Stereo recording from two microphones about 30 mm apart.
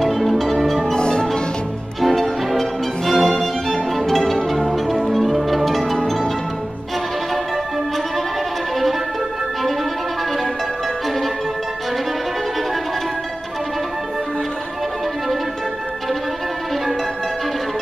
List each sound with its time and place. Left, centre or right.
0.0 s music: centre
0.9 s music: left
2.0 s music: centre